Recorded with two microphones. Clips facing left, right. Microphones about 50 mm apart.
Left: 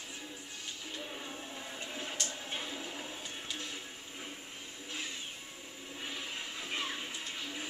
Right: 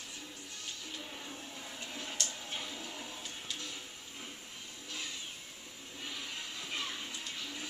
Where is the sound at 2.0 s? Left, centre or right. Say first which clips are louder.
Even; centre.